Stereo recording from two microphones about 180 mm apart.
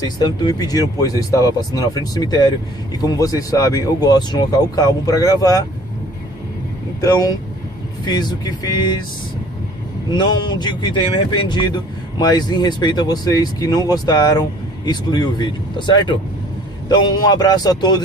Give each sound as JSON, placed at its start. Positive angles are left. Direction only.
{"t": 0.2, "sound": "speech", "side_deg": 25}
{"t": 7.0, "sound": "speech", "side_deg": 20}
{"t": 10.1, "sound": "speech", "side_deg": 25}